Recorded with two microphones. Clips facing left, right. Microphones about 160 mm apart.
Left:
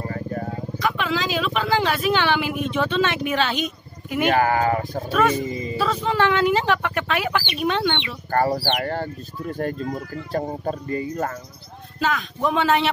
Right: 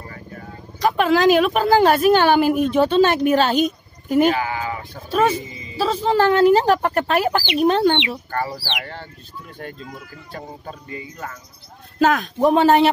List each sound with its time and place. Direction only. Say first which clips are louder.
0.0 s vehicle: left 9 dB; 40° left (ahead or behind)
0.7 s speech: right 8 dB; 40° right (ahead or behind)
4.3 s speech: left 4 dB; 50° left (ahead or behind)
5.8 s speech: right 4 dB; 35° right (ahead or behind)
8.3 s speech: left 6 dB; 45° left (ahead or behind)
12.0 s speech: right 7 dB; 50° right (ahead or behind)